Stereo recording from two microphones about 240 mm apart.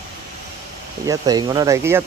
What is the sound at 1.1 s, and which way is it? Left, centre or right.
Speech, centre.